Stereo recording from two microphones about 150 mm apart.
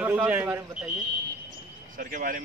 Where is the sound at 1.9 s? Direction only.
65° right (ahead or behind).